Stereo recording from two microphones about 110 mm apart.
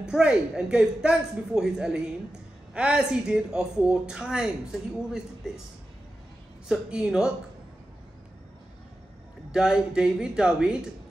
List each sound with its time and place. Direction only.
0.0 s speech: 10° right (ahead or behind)
6.7 s speech: 5° right (ahead or behind)
9.5 s speech: 5° right (ahead or behind)